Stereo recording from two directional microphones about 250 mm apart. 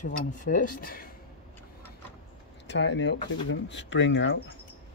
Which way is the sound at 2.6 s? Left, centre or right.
Left.